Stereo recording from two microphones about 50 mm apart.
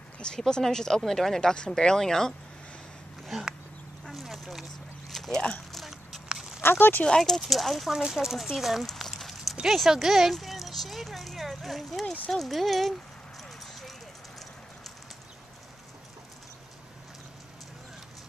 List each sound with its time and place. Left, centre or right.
0.5 s speech: centre
4.0 s a sound: centre
5.1 s vehicle: centre
6.2 s walk: centre
6.6 s speech: left
7.1 s speech: centre
7.9 s speech: centre
8.8 s a sound: centre
9.7 s speech: centre
13.4 s clip-clop: centre